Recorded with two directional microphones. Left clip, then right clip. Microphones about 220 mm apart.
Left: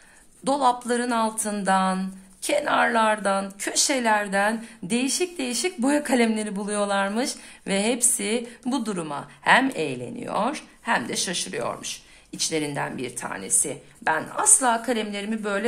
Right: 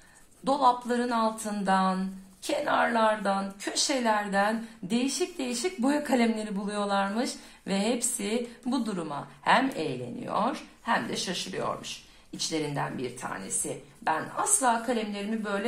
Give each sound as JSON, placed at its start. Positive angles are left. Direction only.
{"t": 0.5, "sound": "a woman's voice", "side_deg": 40}